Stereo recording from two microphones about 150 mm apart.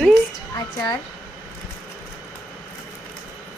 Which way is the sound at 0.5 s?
25° left (ahead or behind).